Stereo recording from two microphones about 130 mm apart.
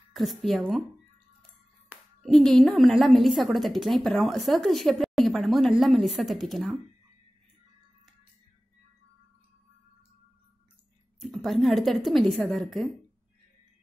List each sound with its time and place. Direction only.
0.1 s a woman's voice: centre (ahead or behind)
1.9 s clapping: 10° right (ahead or behind)
2.2 s a woman's voice: 5° left (ahead or behind)
11.1 s a woman's voice: centre (ahead or behind)